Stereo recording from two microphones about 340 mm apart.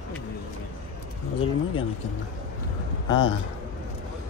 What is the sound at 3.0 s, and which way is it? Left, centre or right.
Speech, left.